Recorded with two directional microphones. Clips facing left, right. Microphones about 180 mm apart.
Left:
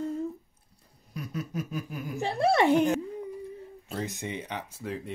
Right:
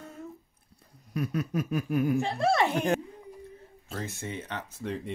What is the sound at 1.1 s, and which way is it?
Snicker, 60° right (ahead or behind).